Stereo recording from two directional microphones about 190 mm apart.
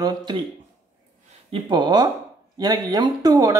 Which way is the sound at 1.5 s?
25° right (ahead or behind).